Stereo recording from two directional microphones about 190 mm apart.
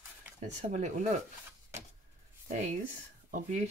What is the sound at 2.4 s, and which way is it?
Speech, 40° right (ahead or behind).